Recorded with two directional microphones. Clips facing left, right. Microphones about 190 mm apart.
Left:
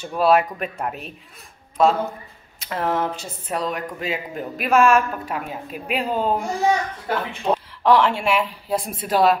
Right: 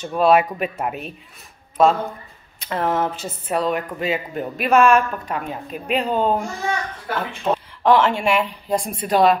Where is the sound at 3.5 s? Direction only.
60° right (ahead or behind).